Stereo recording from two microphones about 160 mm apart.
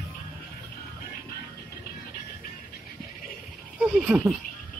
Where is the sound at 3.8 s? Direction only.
5° right (ahead or behind).